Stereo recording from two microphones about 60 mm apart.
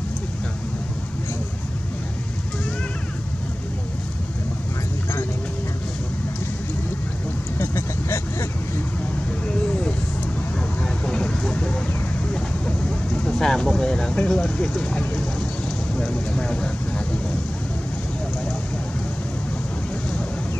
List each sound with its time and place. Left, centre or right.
7.5 s vehicle: left
11.1 s vehicle: centre
13.2 s vehicle: centre